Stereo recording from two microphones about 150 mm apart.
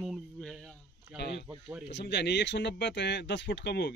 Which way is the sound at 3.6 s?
90° left.